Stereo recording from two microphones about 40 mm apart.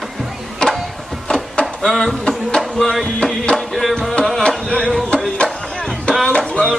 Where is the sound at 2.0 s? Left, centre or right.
Centre.